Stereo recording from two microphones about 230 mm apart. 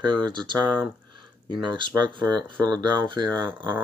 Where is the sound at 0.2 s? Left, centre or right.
Centre.